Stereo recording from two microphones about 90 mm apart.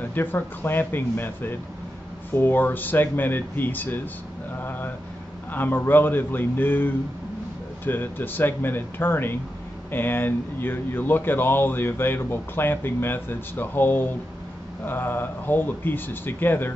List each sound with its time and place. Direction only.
0.0 s speech: 20° left (ahead or behind)
4.6 s a sound: 20° left (ahead or behind)
5.5 s speech: 20° left (ahead or behind)